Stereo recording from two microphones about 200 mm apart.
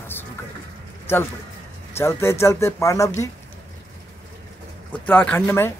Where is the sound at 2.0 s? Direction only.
15° left (ahead or behind).